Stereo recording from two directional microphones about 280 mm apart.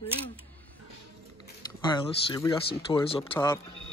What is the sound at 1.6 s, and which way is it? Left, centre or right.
Speech, centre.